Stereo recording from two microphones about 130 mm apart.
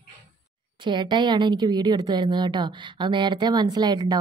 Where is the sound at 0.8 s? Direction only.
35° right (ahead or behind).